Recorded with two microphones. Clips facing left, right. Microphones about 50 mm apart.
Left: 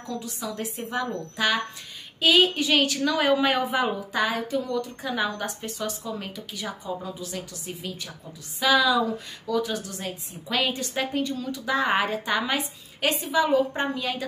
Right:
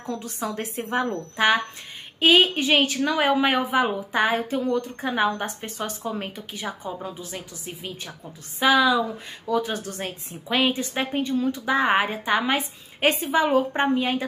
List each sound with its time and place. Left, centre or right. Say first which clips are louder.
0.1 s a woman's voice: right 3 dB; right
3.6 s speech: right 3 dB; centre
4.1 s a woman's voice: right 3 dB; right
8.5 s a woman's voice: right 2 dB; right
9.5 s a woman's voice: right 2 dB; right
10.5 s a woman's voice: right 3 dB; right